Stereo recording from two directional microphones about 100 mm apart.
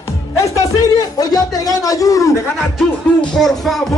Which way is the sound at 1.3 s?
40° left (ahead or behind).